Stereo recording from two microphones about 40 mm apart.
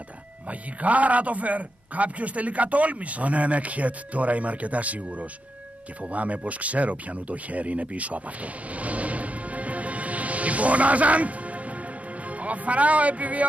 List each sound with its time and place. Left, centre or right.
0.5 s a man's voice: right